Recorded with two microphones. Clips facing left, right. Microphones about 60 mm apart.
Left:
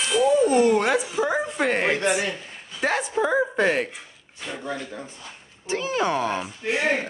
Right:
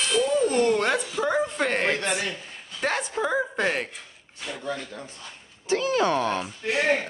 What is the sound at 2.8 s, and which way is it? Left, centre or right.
A woman's voice, centre.